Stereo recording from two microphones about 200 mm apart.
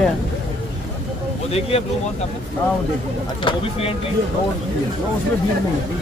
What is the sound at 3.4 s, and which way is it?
Speech, 30° left (ahead or behind).